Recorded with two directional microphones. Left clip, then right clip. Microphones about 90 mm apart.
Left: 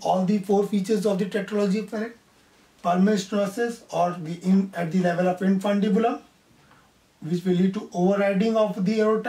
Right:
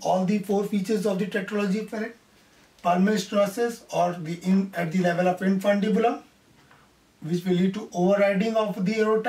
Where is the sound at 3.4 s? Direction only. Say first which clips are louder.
Right 2 dB; 30° right (ahead or behind).